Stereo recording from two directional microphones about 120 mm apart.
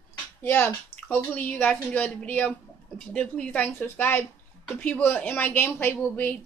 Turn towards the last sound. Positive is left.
turn(degrees=15)  # may be behind; listen again after turning